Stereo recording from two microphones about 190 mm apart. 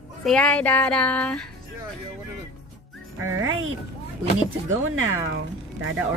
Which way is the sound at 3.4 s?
90° right.